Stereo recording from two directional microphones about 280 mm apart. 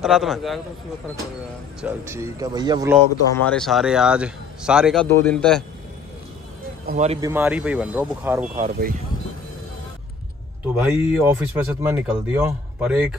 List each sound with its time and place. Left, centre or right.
0.0 s speech: centre
1.8 s a man's voice: centre
3.3 s speech: centre
6.9 s speech: right
7.2 s speech: centre
8.5 s speech: right
10.8 s a man's voice: centre